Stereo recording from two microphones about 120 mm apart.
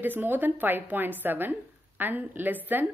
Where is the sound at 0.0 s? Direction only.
15° right (ahead or behind).